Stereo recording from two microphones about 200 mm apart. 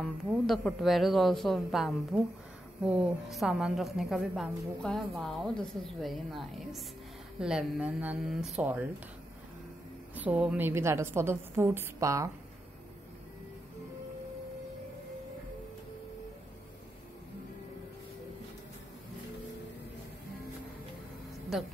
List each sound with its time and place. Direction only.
0.0 s a woman's voice: centre (ahead or behind)
10.1 s a woman's voice: 5° right (ahead or behind)
21.5 s a woman's voice: centre (ahead or behind)